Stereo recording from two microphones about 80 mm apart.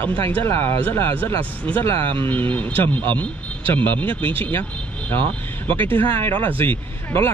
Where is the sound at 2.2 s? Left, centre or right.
Left.